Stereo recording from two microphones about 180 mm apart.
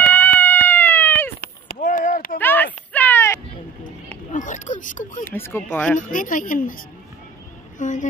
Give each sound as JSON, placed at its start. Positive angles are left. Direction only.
{"t": 0.0, "sound": "cat", "side_deg": 10}
{"t": 1.4, "sound": "clip-clop", "side_deg": 50}
{"t": 2.3, "sound": "a sound", "side_deg": 10}
{"t": 4.3, "sound": "a sound", "side_deg": 45}
{"t": 5.2, "sound": "speech", "side_deg": 15}
{"t": 5.9, "sound": "a woman's voice", "side_deg": 45}
{"t": 7.8, "sound": "a woman's voice", "side_deg": 45}